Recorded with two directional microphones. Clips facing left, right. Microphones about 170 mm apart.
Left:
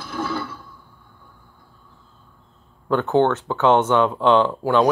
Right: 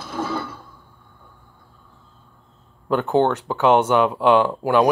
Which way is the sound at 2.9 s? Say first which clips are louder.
Even; 10° right (ahead or behind).